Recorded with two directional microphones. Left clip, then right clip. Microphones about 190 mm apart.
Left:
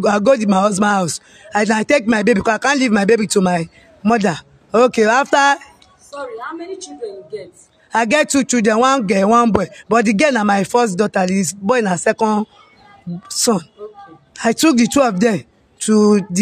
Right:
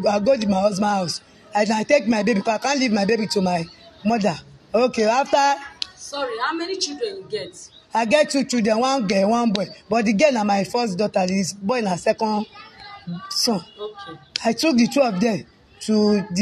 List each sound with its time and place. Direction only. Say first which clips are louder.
0.0 s a man's voice: left 5 dB; 50° left (ahead or behind)
6.1 s a woman's voice: right 3 dB; centre (ahead or behind)
7.9 s a man's voice: left 3 dB; 50° left (ahead or behind)